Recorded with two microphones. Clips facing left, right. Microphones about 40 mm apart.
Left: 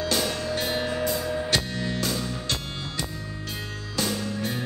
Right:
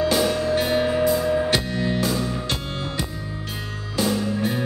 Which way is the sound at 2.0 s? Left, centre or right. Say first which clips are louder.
Right 5 dB; centre.